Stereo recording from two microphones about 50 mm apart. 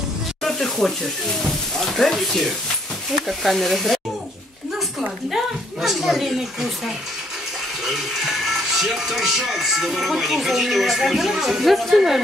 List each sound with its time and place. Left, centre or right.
0.4 s sizzle: centre
1.4 s speech: centre
7.8 s speech: centre